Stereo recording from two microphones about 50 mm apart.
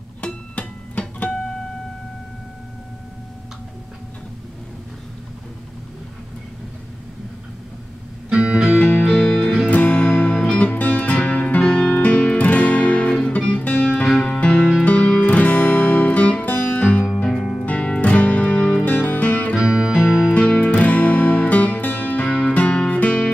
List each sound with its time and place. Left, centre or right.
0.2 s music: left
8.3 s music: centre
9.7 s music: left
14.6 s music: centre
14.9 s music: left
17.2 s music: centre
17.6 s music: left
19.5 s music: centre
20.3 s music: left